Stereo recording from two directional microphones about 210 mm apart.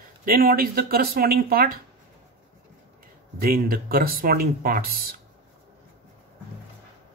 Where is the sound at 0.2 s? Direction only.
45° right (ahead or behind).